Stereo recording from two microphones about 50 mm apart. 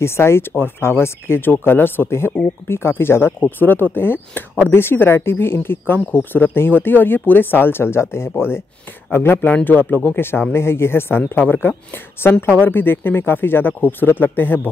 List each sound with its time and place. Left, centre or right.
0.0 s speech: left
2.0 s speech: left
3.4 s speech: left
9.7 s speech: left
10.5 s speech: left
12.2 s speech: left